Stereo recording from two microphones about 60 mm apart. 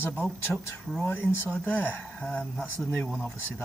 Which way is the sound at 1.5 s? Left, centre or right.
Left.